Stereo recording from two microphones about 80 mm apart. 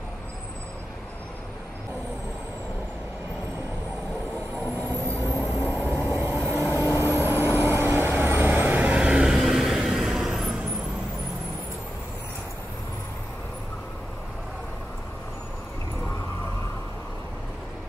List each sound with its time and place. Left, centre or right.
4.8 s vehicle: right; by 10.5 s centre